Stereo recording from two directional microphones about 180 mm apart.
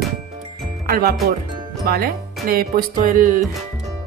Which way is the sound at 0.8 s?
55° right (ahead or behind).